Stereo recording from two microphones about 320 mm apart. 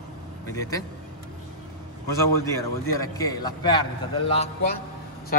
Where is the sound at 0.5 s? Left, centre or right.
Centre.